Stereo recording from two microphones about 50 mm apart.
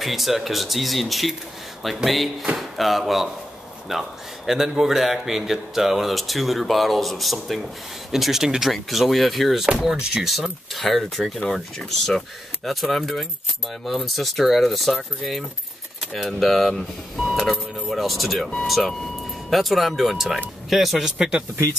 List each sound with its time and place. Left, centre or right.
0.0 s speech: centre
9.8 s speech: centre
21.2 s speech: centre